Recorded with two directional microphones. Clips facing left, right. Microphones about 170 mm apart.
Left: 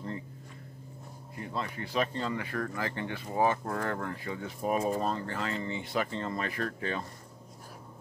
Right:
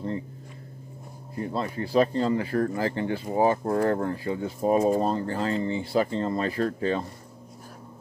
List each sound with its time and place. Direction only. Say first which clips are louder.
1.3 s speech: right 7 dB; 35° right (ahead or behind)